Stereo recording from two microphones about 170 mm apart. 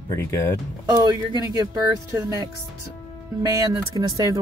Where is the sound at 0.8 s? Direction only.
25° right (ahead or behind).